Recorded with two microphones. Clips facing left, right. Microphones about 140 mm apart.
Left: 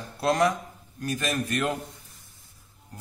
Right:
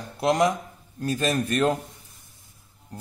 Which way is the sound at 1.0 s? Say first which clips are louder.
Right 4 dB; 30° right (ahead or behind).